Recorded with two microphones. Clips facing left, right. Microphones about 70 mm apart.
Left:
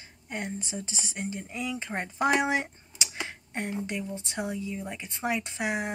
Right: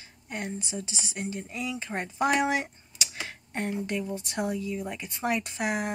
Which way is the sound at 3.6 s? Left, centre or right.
Centre.